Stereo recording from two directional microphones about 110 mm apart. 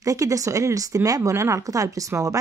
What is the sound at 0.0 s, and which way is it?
Speech, 30° right (ahead or behind).